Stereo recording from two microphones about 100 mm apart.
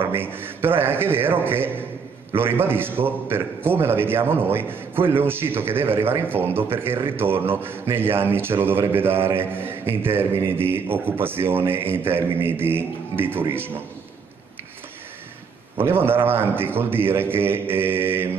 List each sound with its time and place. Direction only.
0.0 s a man's voice: 20° right (ahead or behind)
15.8 s a man's voice: 20° right (ahead or behind)